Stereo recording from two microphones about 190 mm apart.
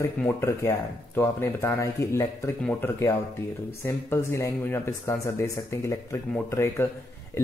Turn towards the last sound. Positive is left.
turn(degrees=15)  # may be behind; listen again after turning